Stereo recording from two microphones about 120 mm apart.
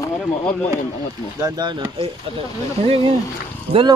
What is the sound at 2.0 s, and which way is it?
Speech, 50° right (ahead or behind).